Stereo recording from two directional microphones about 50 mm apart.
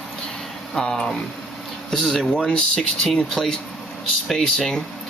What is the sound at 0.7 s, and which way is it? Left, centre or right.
Speech, centre.